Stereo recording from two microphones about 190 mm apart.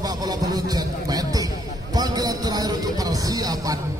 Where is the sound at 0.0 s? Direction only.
20° right (ahead or behind).